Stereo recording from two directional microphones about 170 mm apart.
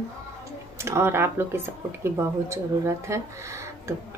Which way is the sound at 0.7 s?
15° right (ahead or behind).